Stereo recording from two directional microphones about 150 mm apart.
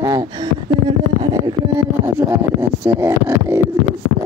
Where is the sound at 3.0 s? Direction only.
15° right (ahead or behind).